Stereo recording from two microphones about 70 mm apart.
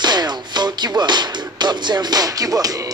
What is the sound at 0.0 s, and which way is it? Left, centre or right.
Music, right.